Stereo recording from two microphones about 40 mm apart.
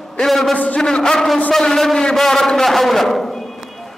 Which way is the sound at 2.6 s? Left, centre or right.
Centre.